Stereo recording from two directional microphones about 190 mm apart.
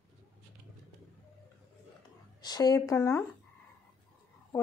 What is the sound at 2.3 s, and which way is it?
Speech, 20° left (ahead or behind).